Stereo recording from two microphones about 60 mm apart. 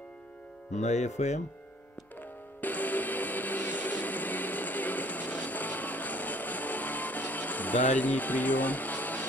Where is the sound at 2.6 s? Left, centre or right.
Left.